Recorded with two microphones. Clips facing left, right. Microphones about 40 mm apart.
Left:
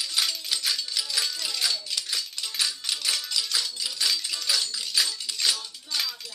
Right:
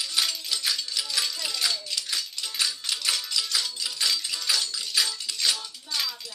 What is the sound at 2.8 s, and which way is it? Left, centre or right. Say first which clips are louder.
Music: right 1 dB; centre.